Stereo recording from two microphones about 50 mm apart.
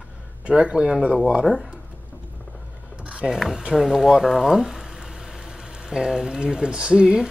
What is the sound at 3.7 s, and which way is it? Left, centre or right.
Boiling, centre.